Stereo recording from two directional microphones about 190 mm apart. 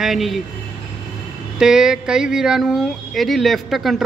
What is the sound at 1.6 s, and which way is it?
Speech, 5° right (ahead or behind).